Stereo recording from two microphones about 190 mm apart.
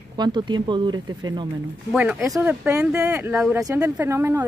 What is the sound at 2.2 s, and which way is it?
Speech, 15° right (ahead or behind).